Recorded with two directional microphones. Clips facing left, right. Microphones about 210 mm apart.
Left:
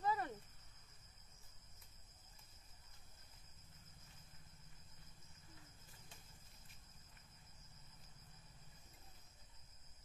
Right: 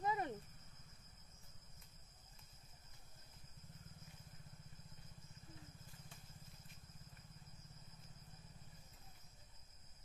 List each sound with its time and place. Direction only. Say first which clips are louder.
0.0 s cricket: even; 20° right (ahead or behind)